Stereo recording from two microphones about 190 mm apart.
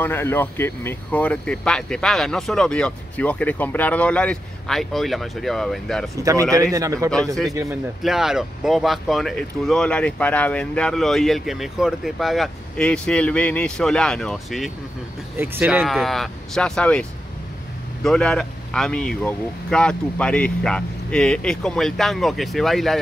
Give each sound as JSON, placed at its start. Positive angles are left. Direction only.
{"t": 0.0, "sound": "speech", "side_deg": 10}
{"t": 6.1, "sound": "a man's voice", "side_deg": -15}
{"t": 8.0, "sound": "speech", "side_deg": 0}
{"t": 15.3, "sound": "a man's voice", "side_deg": -10}
{"t": 15.8, "sound": "speech", "side_deg": 0}
{"t": 18.0, "sound": "speech", "side_deg": 5}